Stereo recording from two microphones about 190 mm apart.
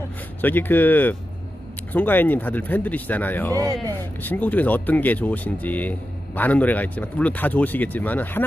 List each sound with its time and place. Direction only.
0.4 s speech: 10° left (ahead or behind)